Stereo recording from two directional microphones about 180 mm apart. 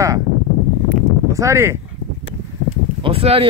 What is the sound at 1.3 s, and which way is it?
Speech, 15° right (ahead or behind).